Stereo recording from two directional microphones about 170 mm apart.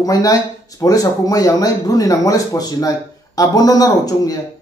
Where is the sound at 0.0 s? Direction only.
20° left (ahead or behind).